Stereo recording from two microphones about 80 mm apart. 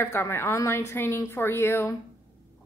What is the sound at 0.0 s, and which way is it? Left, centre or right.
A woman's voice, left.